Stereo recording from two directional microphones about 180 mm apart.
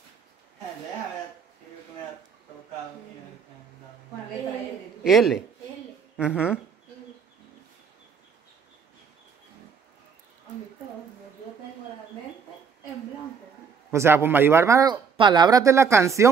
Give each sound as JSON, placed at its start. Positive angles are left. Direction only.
{"t": 5.0, "sound": "a man's voice", "side_deg": 0}
{"t": 13.9, "sound": "speech", "side_deg": -15}